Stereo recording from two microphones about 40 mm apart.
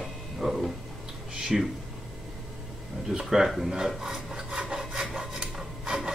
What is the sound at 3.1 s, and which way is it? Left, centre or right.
Speech, centre.